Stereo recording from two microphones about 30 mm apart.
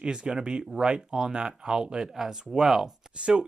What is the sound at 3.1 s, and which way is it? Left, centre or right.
Chopping, right.